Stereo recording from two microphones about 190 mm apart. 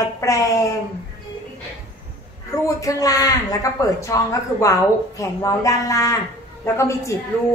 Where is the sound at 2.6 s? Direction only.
20° left (ahead or behind).